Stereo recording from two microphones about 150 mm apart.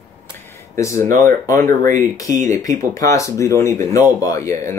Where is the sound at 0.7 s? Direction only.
20° left (ahead or behind).